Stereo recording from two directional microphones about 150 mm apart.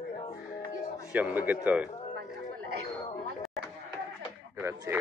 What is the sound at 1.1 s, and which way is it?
Speech, 10° right (ahead or behind).